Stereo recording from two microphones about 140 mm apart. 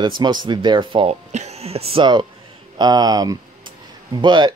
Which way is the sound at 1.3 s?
50° right (ahead or behind).